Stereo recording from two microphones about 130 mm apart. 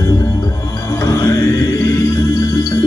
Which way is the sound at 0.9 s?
25° left (ahead or behind).